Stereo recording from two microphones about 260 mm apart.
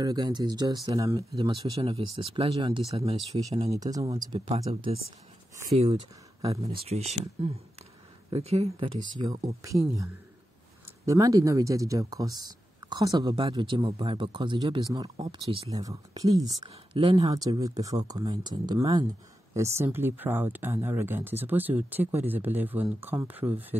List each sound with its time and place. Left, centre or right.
0.0 s speech: centre
6.4 s speech: right
11.1 s speech: centre